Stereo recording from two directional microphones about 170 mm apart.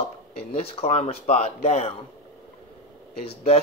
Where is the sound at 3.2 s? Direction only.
35° left (ahead or behind).